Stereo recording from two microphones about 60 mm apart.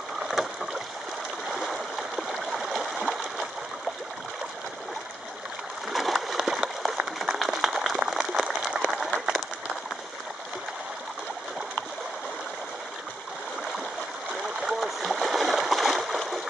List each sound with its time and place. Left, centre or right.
0.3 s boat: centre
1.5 s stream: centre
5.9 s splash: centre
7.3 s a sound: centre
14.6 s splash: centre